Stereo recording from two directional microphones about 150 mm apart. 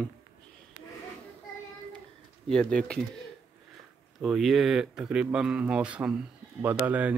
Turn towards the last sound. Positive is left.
turn(degrees=-10)  # may be behind; listen again after turning